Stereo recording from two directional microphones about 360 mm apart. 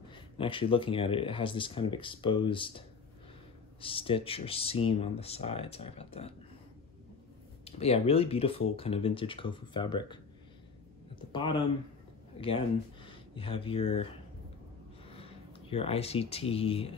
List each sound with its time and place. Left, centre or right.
0.1 s speech: centre
3.8 s speech: centre
7.6 s speech: centre
11.4 s speech: centre